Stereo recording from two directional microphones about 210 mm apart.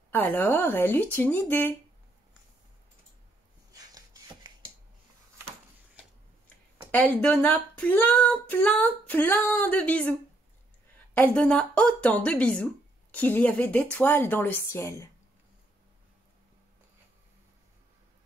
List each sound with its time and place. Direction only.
0.1 s speech: 10° left (ahead or behind)
3.7 s a sound: 15° right (ahead or behind)
6.9 s speech: 5° left (ahead or behind)
11.1 s a woman's voice: 5° left (ahead or behind)